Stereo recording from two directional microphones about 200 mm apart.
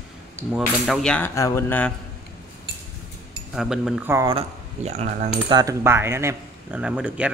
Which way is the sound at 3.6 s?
Centre (ahead or behind).